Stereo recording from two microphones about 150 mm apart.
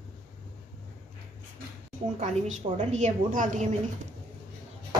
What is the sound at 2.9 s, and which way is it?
Speech, 50° right (ahead or behind).